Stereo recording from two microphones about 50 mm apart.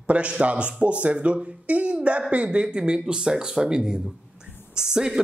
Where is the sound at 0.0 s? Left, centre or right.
Right.